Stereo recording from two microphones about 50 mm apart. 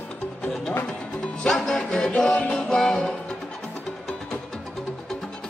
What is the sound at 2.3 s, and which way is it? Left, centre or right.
Music, left.